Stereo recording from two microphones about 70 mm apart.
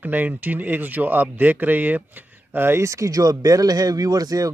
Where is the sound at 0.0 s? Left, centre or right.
Right.